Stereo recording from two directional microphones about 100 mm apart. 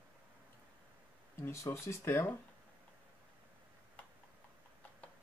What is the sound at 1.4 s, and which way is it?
Speech, 25° left (ahead or behind).